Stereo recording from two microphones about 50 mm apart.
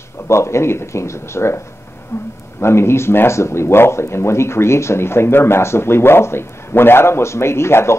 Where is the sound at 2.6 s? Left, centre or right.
Left.